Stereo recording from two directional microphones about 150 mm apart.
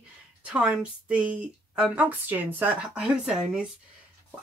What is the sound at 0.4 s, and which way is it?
Speech, 10° right (ahead or behind).